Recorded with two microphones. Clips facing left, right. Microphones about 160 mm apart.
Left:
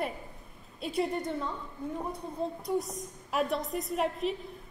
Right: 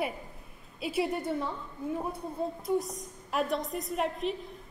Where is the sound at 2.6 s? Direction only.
Centre (ahead or behind).